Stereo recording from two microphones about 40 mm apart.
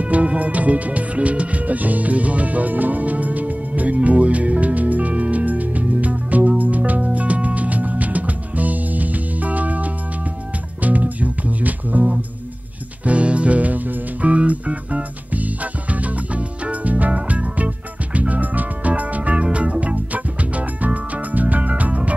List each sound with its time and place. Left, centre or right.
0.0 s music: right
13.0 s music: right
19.3 s music: right